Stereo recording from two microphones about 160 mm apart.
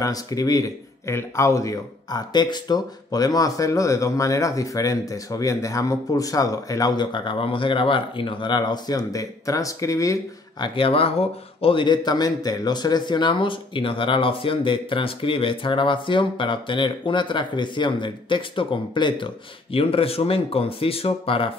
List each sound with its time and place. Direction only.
0.0 s speech: 20° left (ahead or behind)
10.7 s speech: 35° left (ahead or behind)